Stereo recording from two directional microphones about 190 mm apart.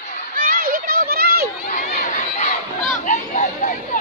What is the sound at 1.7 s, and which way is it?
Run, 45° left (ahead or behind).